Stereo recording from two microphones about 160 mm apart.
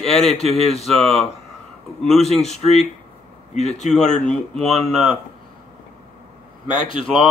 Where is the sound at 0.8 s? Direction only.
Centre (ahead or behind).